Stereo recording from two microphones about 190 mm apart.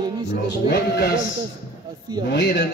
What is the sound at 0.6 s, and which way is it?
Speech, 60° left (ahead or behind).